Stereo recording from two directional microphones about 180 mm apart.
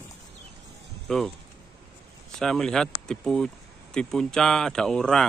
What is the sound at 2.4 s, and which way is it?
Speech, 5° left (ahead or behind).